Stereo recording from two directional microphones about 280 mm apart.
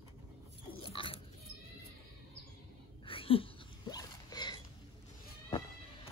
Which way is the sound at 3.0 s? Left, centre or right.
Centre.